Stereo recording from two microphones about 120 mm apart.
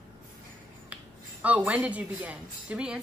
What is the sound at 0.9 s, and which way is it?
Speech, 10° right (ahead or behind).